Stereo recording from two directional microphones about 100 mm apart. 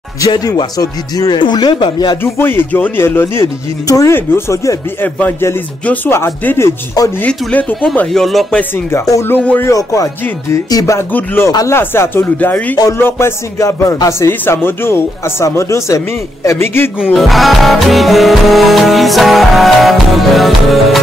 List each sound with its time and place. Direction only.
0.5 s speech: 40° left (ahead or behind)
2.2 s speech: 25° left (ahead or behind)
7.2 s speech: 15° left (ahead or behind)
8.1 s music: centre (ahead or behind)
8.5 s speech: 20° left (ahead or behind)
9.7 s speech: 35° left (ahead or behind)
11.0 s speech: 25° left (ahead or behind)
17.1 s music: centre (ahead or behind)